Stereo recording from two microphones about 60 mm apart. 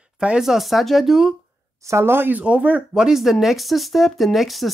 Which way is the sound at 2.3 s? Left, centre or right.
Right.